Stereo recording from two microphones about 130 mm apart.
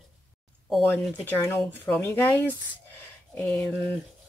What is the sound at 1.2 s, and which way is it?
Speech, 20° left (ahead or behind).